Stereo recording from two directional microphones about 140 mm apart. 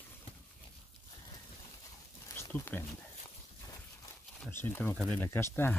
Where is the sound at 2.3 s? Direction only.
15° left (ahead or behind).